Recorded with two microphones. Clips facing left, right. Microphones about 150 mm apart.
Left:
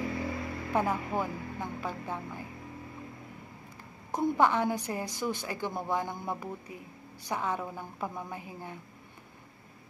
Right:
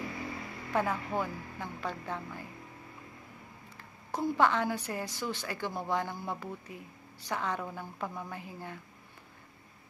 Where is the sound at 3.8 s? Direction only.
15° left (ahead or behind).